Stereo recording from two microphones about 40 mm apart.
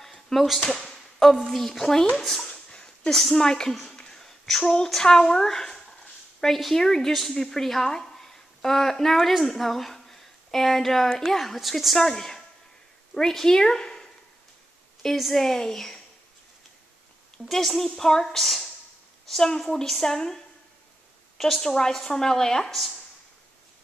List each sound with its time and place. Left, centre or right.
0.0 s a sound: centre
0.7 s speech: centre
2.7 s a sound: centre
3.2 s a woman's voice: centre
3.4 s a woman's voice: centre
3.8 s a sound: centre
4.6 s a woman's voice: centre
11.3 s a woman's voice: centre
15.1 s a woman's voice: centre
15.4 s a woman's voice: centre
17.5 s a woman's voice: centre
21.4 s a woman's voice: centre
22.7 s a woman's voice: centre